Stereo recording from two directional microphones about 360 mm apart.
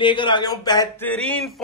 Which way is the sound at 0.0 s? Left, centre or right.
Centre.